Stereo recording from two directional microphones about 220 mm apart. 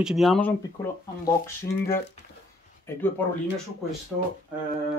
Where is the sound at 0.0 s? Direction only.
Centre (ahead or behind).